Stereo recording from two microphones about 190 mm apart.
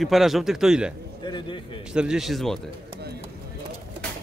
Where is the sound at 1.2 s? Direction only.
25° left (ahead or behind).